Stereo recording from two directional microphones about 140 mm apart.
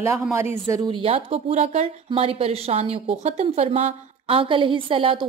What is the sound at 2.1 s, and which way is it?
A woman's voice, 40° right (ahead or behind).